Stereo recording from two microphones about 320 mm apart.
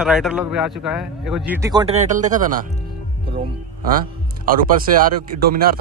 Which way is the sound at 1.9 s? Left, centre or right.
Right.